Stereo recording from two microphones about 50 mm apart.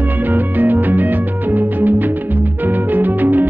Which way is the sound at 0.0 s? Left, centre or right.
Right.